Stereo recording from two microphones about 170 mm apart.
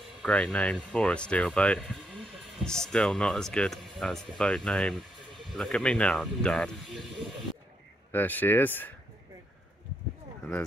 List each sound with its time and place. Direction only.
0.2 s speech: 5° left (ahead or behind)
8.1 s speech: 10° left (ahead or behind)